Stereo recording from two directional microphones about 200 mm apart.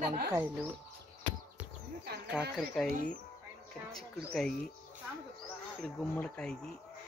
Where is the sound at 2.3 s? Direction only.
Centre (ahead or behind).